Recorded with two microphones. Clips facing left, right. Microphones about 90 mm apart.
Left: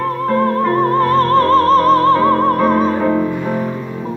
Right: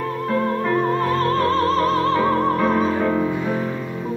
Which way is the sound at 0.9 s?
55° left (ahead or behind).